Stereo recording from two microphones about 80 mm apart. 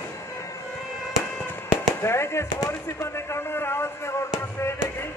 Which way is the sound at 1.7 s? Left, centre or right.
Left.